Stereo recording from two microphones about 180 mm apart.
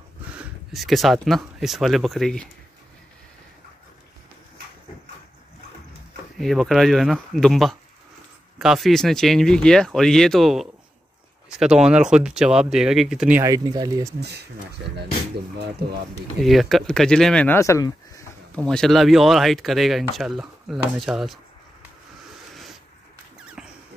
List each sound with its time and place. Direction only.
0.4 s speech: centre (ahead or behind)
6.3 s speech: centre (ahead or behind)
13.4 s speech: 20° right (ahead or behind)
14.8 s speech: 70° right (ahead or behind)
16.4 s speech: centre (ahead or behind); by 18.2 s 15° left (ahead or behind)
18.6 s speech: 5° left (ahead or behind)
23.6 s a sound: 5° right (ahead or behind)